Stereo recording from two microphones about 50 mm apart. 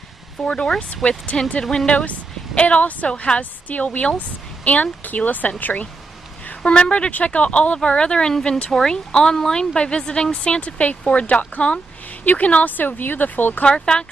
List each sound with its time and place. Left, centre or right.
0.4 s speech: left
6.4 s speech: left
13.7 s speech: centre